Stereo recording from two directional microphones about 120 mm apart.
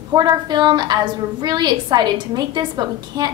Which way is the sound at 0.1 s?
35° right (ahead or behind).